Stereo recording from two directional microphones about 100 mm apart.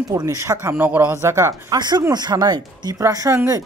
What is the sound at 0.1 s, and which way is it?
Speech, 30° right (ahead or behind).